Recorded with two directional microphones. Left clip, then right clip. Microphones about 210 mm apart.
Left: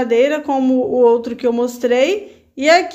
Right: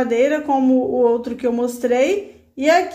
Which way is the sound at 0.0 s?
20° left (ahead or behind).